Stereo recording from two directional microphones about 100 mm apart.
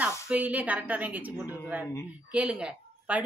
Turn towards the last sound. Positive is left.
turn(degrees=-10)  # may be behind; listen again after turning